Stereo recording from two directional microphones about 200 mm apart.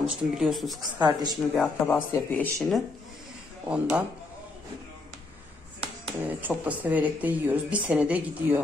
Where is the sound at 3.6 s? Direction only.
5° right (ahead or behind).